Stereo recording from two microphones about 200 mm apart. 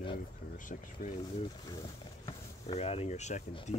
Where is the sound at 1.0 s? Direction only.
45° left (ahead or behind).